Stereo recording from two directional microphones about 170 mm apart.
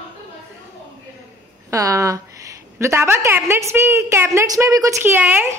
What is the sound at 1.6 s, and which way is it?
A woman's voice, 20° right (ahead or behind).